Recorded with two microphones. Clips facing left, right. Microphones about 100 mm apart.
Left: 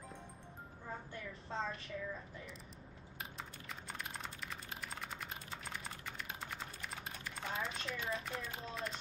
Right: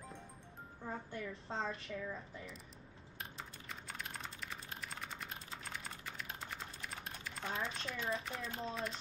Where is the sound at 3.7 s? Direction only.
Centre (ahead or behind).